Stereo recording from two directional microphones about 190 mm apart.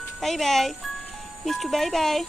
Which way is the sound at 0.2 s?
Centre (ahead or behind).